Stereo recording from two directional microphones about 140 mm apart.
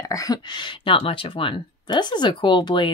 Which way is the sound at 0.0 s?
25° left (ahead or behind).